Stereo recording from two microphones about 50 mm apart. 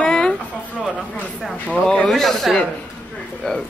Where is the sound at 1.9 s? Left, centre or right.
Centre.